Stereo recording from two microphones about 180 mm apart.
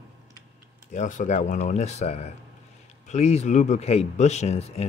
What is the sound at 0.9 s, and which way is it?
Speech, 45° left (ahead or behind).